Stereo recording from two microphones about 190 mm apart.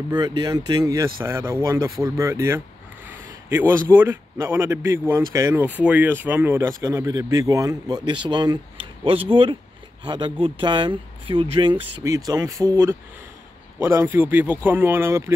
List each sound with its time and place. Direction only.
0.1 s a man's voice: 25° right (ahead or behind)